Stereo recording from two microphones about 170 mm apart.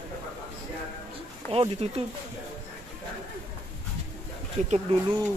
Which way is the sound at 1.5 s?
35° right (ahead or behind).